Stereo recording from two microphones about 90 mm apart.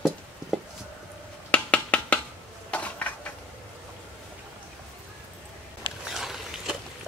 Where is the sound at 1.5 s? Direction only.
15° left (ahead or behind).